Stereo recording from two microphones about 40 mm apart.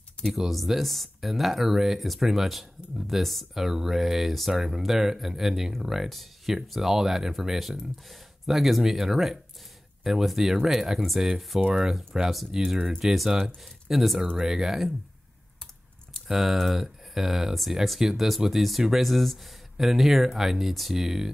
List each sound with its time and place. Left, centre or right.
0.2 s speech: centre
6.0 s speech: centre
14.3 s speech: centre
16.3 s speech: centre